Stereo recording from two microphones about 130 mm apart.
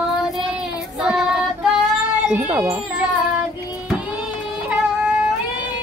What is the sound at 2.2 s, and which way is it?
Speech, 10° right (ahead or behind).